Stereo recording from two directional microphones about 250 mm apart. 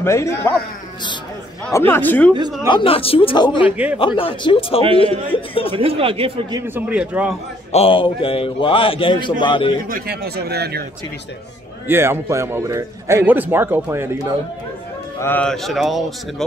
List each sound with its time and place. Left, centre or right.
0.0 s speech: centre
1.7 s speech: centre
2.7 s a man's voice: left
3.6 s speech: centre
4.0 s a man's voice: left
5.8 s speech: right
6.7 s speech: centre
7.7 s a man's voice: left
9.8 s speech: right
11.9 s a man's voice: centre
15.1 s speech: centre